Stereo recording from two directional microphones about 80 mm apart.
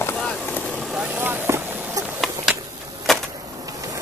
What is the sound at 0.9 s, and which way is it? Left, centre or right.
Vehicle, right.